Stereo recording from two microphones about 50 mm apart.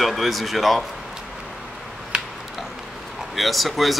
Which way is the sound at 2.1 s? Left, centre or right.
Centre.